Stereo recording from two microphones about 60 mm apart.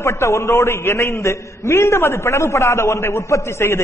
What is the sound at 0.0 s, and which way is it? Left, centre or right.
A man's voice, left.